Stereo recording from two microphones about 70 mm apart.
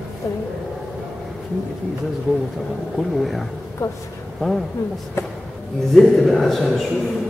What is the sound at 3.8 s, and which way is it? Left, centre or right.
Speech, left.